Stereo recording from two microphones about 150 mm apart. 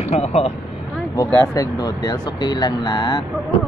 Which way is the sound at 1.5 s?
25° left (ahead or behind).